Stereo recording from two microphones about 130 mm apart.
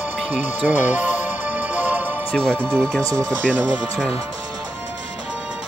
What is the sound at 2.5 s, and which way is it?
Speech, 15° right (ahead or behind).